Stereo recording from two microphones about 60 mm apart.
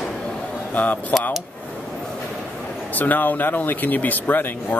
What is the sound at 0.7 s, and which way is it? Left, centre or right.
Speech, left.